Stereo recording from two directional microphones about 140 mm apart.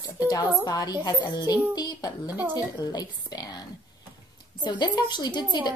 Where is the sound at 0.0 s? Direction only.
25° left (ahead or behind).